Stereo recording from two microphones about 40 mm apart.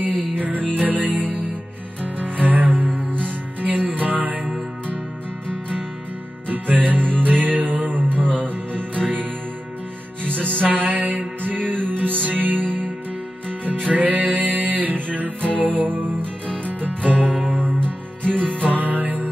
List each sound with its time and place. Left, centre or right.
0.4 s music: right
6.5 s music: right
13.8 s music: right